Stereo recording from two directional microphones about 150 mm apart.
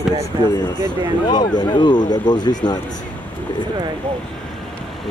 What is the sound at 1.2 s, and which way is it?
Speech, 30° left (ahead or behind).